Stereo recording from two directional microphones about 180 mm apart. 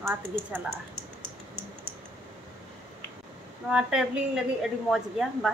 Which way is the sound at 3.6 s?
5° right (ahead or behind).